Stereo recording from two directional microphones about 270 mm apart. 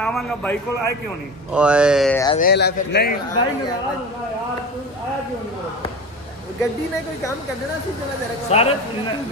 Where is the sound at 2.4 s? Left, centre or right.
Left.